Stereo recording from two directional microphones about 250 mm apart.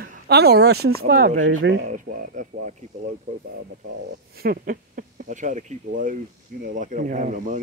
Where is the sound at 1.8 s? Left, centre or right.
Right.